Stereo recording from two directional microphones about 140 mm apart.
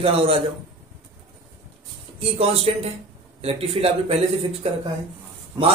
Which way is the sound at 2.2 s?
45° right (ahead or behind).